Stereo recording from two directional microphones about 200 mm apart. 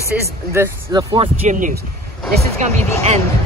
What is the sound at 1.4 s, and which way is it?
Speech, 40° right (ahead or behind).